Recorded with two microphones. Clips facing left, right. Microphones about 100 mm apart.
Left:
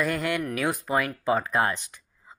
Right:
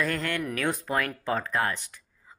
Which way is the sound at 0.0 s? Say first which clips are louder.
Left 2 dB; 10° left (ahead or behind).